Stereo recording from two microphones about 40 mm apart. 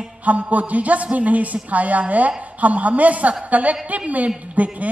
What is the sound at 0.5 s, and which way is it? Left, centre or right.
A woman's voice, right.